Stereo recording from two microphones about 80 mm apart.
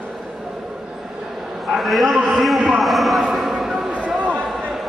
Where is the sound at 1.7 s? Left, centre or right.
Centre.